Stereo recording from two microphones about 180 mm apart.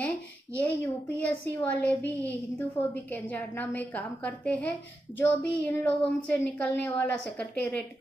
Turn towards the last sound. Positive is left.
turn(degrees=10)  # may be behind; listen again after turning